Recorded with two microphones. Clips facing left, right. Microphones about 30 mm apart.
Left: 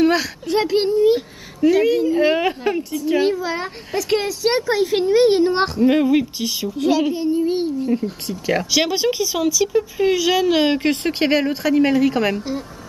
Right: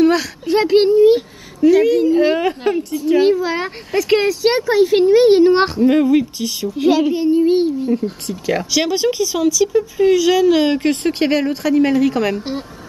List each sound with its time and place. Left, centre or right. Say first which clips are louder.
0.0 s a sound: right 3 dB; centre
0.5 s speech: right 6 dB; centre
1.6 s speech: right 4 dB; centre
5.8 s speech: right 2 dB; centre
7.2 s speech: right 5 dB; centre
8.3 s speech: even; centre